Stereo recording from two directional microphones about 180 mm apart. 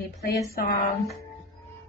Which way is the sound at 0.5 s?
55° left (ahead or behind).